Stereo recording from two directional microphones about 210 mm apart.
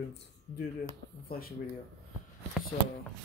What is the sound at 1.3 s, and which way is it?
Speech, 45° left (ahead or behind).